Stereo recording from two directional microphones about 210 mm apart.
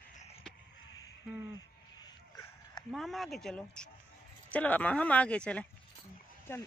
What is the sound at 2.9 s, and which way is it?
Speech, centre (ahead or behind).